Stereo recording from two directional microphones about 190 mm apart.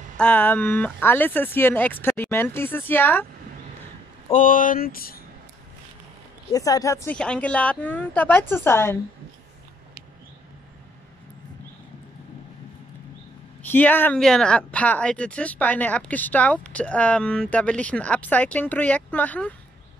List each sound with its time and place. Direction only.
0.2 s speech: 10° left (ahead or behind)
4.3 s speech: 45° left (ahead or behind)
6.5 s speech: 20° left (ahead or behind)
13.6 s speech: 10° left (ahead or behind)